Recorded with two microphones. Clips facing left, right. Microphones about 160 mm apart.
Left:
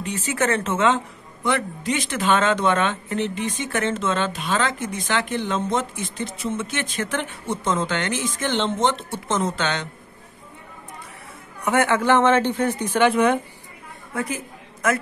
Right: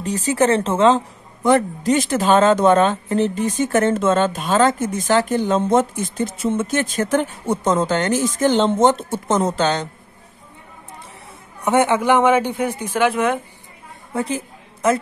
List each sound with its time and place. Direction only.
0.0 s a woman's voice: 35° right (ahead or behind)
11.6 s a man's voice: 20° right (ahead or behind); by 13.4 s centre (ahead or behind)
14.1 s a sound: 30° right (ahead or behind)